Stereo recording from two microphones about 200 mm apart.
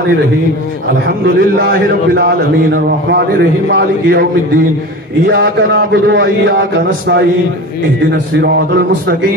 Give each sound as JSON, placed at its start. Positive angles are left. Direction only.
{"t": 1.0, "sound": "a man's voice", "side_deg": -50}
{"t": 8.1, "sound": "a man's voice", "side_deg": -55}